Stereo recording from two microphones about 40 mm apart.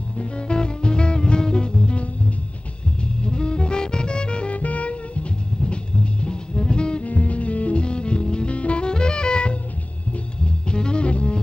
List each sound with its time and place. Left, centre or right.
0.2 s music: left
3.3 s music: left
7.1 s music: left
10.7 s music: left